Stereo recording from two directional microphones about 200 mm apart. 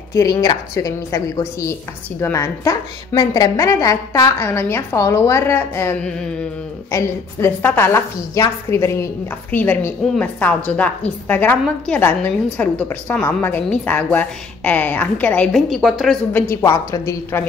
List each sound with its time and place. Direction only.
0.1 s a woman's voice: 15° left (ahead or behind); by 16.4 s centre (ahead or behind)
16.4 s a woman's voice: 15° left (ahead or behind)